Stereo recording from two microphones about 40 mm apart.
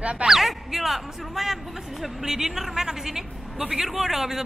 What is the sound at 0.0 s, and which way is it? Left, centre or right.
Speech, right.